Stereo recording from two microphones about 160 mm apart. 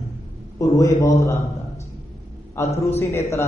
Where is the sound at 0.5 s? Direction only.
20° left (ahead or behind).